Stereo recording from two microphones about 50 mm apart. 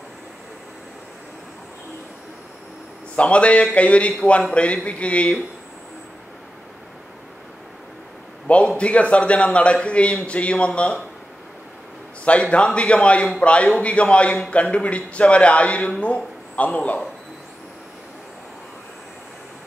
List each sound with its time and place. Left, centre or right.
3.2 s a man's voice: left
8.5 s a man's voice: left
12.3 s a man's voice: left